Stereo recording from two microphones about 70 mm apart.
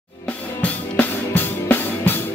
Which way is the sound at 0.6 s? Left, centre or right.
Left.